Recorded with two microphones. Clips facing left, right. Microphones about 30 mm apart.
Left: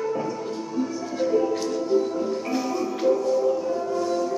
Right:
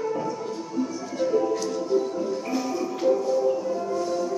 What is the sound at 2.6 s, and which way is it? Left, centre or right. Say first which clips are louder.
Music: left 1 dB; left.